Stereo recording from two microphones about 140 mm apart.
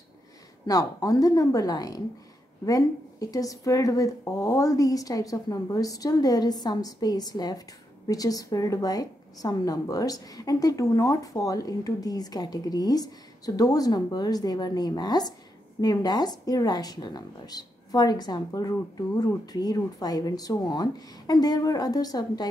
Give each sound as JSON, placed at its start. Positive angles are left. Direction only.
{"t": 0.7, "sound": "a woman's voice", "side_deg": 25}